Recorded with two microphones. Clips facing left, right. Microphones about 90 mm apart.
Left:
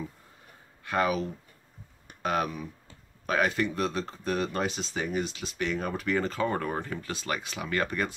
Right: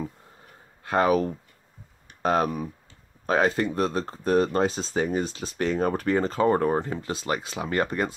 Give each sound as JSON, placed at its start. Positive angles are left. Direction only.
{"t": 0.8, "sound": "speech", "side_deg": -35}
{"t": 2.2, "sound": "speech", "side_deg": -35}